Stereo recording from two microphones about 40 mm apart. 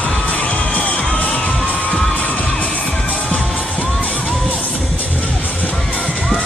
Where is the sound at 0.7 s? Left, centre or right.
Left.